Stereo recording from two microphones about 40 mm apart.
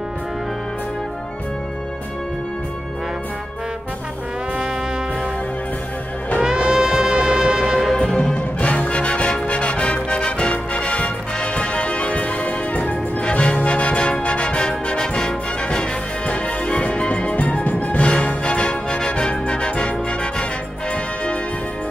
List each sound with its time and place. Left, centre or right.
6.4 s music: centre
8.0 s music: left
8.4 s music: left
13.2 s music: left
18.0 s music: left